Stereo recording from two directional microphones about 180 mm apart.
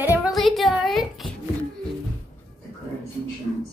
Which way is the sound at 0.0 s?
10° right (ahead or behind).